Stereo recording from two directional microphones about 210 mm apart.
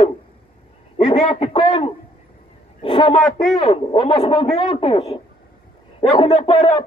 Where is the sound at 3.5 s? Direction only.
25° left (ahead or behind).